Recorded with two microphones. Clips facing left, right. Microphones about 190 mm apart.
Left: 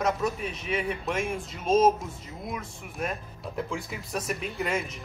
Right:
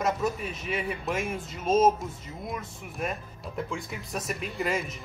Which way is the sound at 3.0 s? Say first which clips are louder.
Left 1 dB; centre (ahead or behind).